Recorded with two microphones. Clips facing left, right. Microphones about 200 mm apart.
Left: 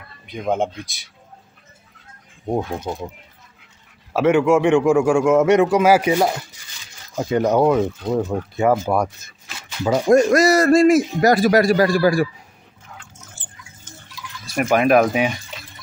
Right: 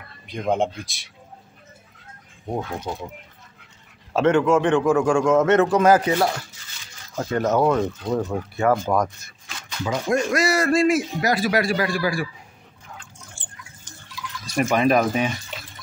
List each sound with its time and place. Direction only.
0.3 s speech: centre (ahead or behind)
2.8 s a man's voice: 20° left (ahead or behind)
4.1 s a man's voice: 10° left (ahead or behind)
9.8 s a man's voice: 40° left (ahead or behind)
14.4 s speech: 5° left (ahead or behind)